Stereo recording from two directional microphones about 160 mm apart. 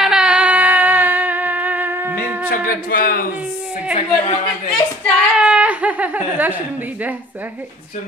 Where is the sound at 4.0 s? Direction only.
45° left (ahead or behind).